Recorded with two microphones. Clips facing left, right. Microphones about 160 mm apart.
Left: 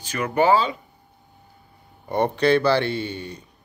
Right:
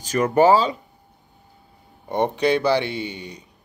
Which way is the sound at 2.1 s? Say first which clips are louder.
Left 1 dB; 15° right (ahead or behind).